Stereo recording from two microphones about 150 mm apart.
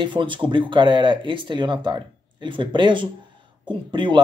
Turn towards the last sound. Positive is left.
turn(degrees=-30)  # may be behind; listen again after turning